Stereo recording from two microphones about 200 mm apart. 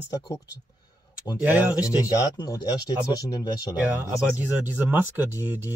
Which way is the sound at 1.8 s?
20° left (ahead or behind).